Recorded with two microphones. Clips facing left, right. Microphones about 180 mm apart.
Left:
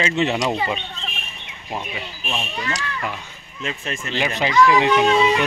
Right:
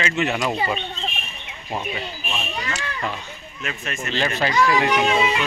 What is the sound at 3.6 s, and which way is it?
Speech, 30° left (ahead or behind).